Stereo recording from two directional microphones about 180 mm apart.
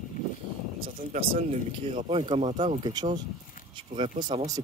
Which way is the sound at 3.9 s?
40° right (ahead or behind).